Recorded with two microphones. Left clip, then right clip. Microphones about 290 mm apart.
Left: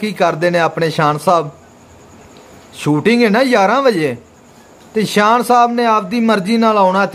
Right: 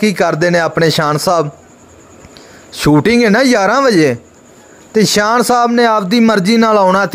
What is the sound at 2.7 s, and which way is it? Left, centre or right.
A man's voice, right.